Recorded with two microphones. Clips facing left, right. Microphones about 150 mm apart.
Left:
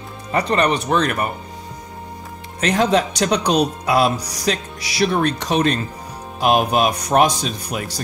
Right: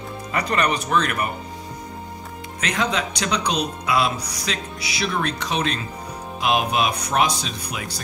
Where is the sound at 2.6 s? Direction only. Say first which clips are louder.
Left 7 dB; 35° left (ahead or behind).